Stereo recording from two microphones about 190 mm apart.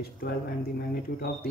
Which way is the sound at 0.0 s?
55° left (ahead or behind).